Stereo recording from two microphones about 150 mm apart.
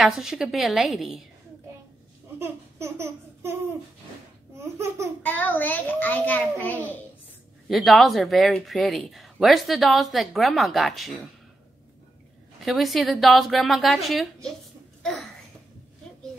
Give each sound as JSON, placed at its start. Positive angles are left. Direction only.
{"t": 0.0, "sound": "speech", "side_deg": -5}
{"t": 2.3, "sound": "a sound", "side_deg": -15}
{"t": 4.7, "sound": "speech", "side_deg": -20}
{"t": 5.2, "sound": "a child's voice", "side_deg": 10}
{"t": 7.6, "sound": "speech", "side_deg": 0}
{"t": 12.6, "sound": "speech", "side_deg": 0}